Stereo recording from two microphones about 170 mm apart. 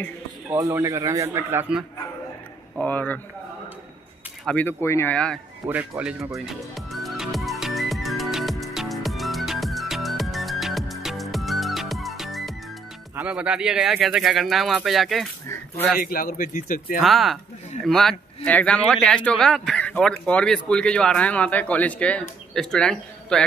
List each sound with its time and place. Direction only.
0.5 s a man's voice: 20° right (ahead or behind)
2.8 s speech: 10° left (ahead or behind)
4.5 s speech: 10° left (ahead or behind)
5.7 s music: 10° right (ahead or behind)
13.1 s speech: 5° right (ahead or behind)
15.4 s a sound: 15° left (ahead or behind)
16.0 s a man's voice: 55° left (ahead or behind)
17.0 s speech: centre (ahead or behind)